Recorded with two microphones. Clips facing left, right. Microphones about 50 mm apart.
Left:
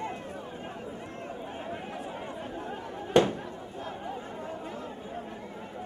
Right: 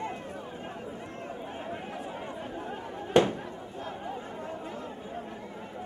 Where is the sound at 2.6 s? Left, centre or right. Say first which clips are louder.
Even; centre.